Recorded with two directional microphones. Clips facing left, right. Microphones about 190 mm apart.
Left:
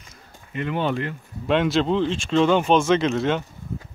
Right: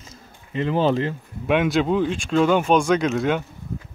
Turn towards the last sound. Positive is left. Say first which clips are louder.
# even
turn(degrees=-5)  # may be behind; listen again after turning